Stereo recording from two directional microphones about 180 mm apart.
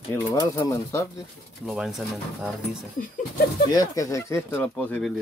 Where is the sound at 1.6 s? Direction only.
Centre (ahead or behind).